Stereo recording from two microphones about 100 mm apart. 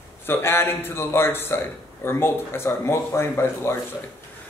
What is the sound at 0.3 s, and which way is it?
A man's voice, 25° left (ahead or behind).